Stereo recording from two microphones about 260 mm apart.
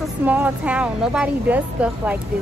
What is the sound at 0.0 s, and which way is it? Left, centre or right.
A woman's voice, centre.